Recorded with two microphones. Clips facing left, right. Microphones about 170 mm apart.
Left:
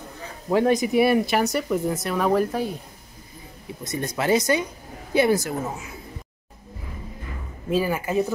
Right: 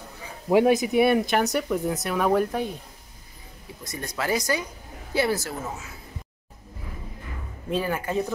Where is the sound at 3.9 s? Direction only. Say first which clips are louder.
Left 5 dB; 20° left (ahead or behind).